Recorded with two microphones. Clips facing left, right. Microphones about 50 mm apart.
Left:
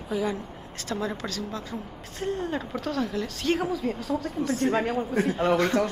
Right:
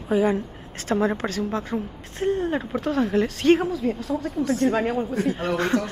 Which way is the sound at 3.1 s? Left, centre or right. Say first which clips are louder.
Right 8 dB; right.